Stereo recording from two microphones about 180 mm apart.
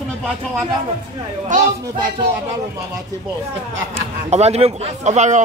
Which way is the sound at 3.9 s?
35° right (ahead or behind).